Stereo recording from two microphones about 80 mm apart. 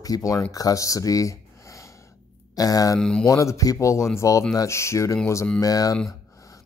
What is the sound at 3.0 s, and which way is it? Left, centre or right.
Speech, centre.